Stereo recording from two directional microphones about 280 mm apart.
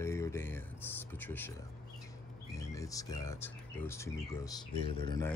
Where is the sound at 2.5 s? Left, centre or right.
Centre.